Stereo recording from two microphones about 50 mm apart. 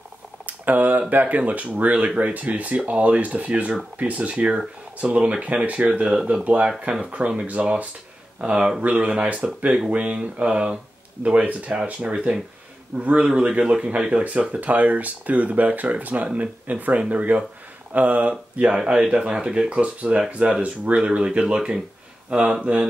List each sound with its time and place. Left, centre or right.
0.5 s speech: right
18.7 s speech: centre